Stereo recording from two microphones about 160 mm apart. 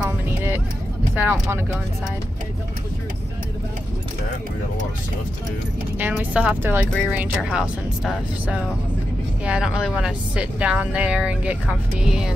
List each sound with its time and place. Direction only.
0.0 s a sound: 10° right (ahead or behind)
1.1 s speech: 10° right (ahead or behind)
5.9 s speech: 10° right (ahead or behind)